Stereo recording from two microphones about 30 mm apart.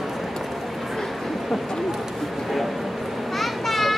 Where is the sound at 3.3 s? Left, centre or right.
Centre.